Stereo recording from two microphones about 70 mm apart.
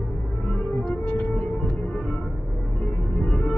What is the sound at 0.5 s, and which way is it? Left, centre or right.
Music, centre.